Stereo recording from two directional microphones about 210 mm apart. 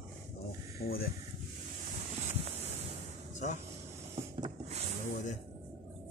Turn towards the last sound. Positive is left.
turn(degrees=-20)  # may be behind; listen again after turning